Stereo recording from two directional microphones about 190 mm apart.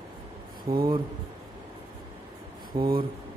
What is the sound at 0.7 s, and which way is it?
Speech, 25° right (ahead or behind).